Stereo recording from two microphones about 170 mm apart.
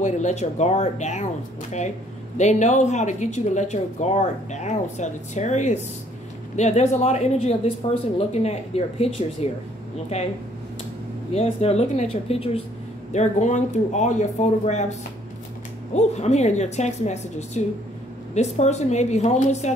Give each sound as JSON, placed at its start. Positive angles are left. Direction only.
{"t": 0.0, "sound": "speech", "side_deg": 45}
{"t": 2.3, "sound": "speech", "side_deg": 45}
{"t": 11.3, "sound": "speech", "side_deg": 35}